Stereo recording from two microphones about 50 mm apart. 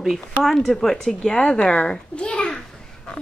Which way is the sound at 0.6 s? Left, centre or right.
Centre.